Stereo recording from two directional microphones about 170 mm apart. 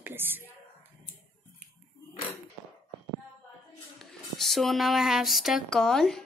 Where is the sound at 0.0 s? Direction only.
10° right (ahead or behind).